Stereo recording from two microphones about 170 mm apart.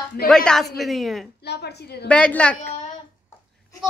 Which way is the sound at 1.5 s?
75° left (ahead or behind).